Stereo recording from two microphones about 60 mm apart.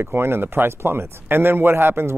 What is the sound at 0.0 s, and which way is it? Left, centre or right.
Speech, right.